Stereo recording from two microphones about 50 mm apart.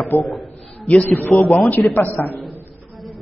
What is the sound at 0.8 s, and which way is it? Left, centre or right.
Speech, left.